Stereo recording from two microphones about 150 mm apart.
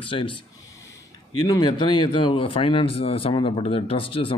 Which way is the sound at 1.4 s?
25° left (ahead or behind).